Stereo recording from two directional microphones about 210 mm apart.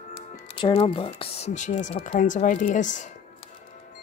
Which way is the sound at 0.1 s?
25° left (ahead or behind).